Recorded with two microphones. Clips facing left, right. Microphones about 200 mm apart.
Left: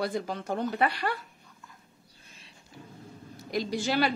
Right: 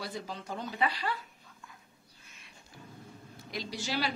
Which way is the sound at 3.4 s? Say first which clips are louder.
Left 9 dB; 45° left (ahead or behind).